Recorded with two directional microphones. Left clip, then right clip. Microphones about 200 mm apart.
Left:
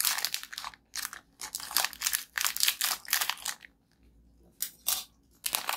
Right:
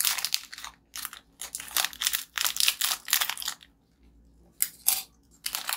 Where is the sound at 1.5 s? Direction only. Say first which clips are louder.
Right 1 dB; 10° left (ahead or behind).